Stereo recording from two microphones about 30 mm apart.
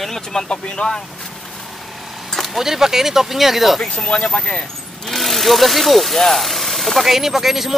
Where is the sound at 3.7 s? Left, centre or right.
Left.